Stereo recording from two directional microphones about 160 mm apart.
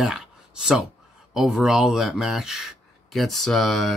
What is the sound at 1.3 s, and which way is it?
Speech, centre (ahead or behind).